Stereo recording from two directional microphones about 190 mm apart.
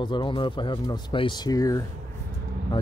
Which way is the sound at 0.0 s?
25° left (ahead or behind).